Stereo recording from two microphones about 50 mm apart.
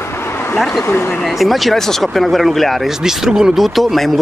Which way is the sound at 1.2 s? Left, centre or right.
Centre.